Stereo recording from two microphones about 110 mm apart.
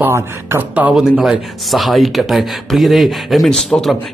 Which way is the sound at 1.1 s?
5° right (ahead or behind).